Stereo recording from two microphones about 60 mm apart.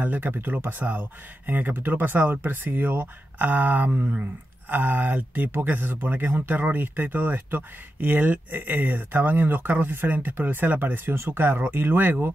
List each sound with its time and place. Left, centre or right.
0.0 s speech: right